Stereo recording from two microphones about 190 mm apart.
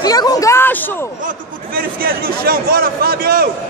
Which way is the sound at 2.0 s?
50° right (ahead or behind).